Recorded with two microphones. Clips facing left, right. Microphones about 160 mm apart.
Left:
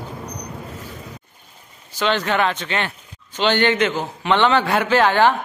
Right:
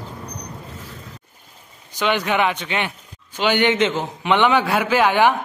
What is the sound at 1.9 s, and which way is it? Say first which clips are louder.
Speech: even; 15° right (ahead or behind).